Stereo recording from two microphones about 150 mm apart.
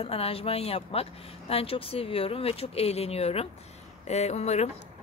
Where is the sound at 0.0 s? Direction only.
40° left (ahead or behind).